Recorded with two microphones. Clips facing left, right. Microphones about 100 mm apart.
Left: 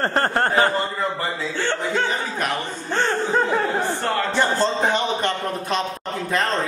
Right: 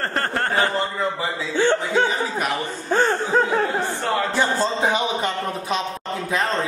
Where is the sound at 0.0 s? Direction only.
35° left (ahead or behind).